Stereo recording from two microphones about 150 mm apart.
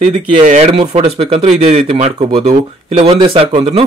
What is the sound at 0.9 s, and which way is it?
Speech, 40° right (ahead or behind).